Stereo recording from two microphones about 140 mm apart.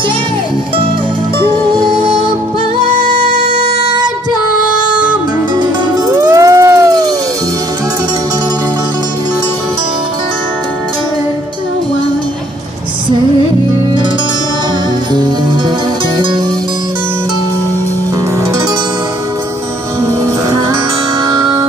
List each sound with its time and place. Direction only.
3.8 s music: 30° right (ahead or behind)
5.6 s music: 25° right (ahead or behind)